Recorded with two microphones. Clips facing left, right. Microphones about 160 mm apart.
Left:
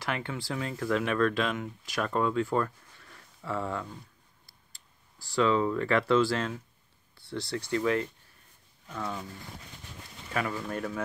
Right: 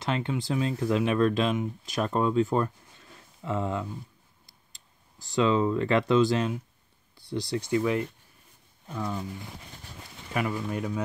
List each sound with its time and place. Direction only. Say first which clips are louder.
0.0 s speech: right 5 dB; 20° right (ahead or behind)
10.3 s speech: right 2 dB; 10° right (ahead or behind)